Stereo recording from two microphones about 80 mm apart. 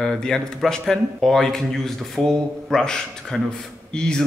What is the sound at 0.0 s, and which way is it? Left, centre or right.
A man's voice, centre.